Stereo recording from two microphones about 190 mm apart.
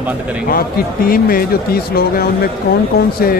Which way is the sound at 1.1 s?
50° left (ahead or behind).